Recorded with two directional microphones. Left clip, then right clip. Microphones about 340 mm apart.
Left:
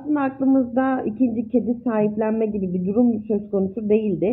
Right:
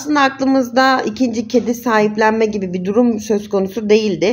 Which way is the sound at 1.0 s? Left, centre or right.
Right.